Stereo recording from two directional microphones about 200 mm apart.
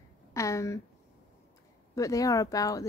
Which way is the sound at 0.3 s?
15° left (ahead or behind).